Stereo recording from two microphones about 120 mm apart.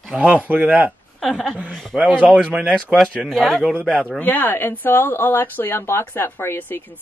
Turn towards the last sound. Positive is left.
turn(degrees=15)  # may be behind; listen again after turning